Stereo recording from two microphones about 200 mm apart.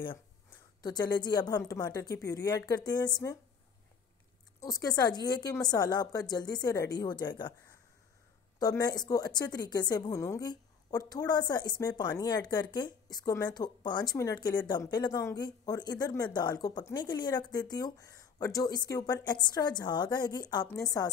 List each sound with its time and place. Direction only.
0.8 s a woman's voice: 20° left (ahead or behind)
4.6 s a woman's voice: 20° left (ahead or behind)
8.5 s a woman's voice: 20° left (ahead or behind)